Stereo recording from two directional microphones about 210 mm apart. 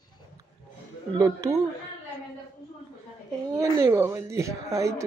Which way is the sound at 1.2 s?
15° right (ahead or behind).